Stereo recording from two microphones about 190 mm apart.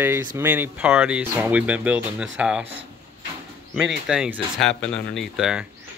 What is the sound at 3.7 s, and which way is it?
Speech, 5° right (ahead or behind).